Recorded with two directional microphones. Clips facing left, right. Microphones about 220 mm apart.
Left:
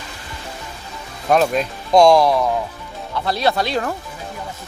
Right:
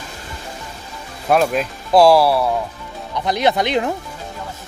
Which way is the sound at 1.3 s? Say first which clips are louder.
Even; 5° right (ahead or behind).